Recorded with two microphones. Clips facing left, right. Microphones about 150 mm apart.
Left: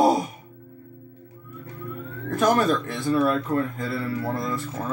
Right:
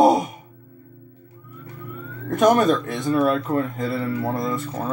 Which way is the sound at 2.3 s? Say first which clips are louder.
Right 4 dB; 20° right (ahead or behind).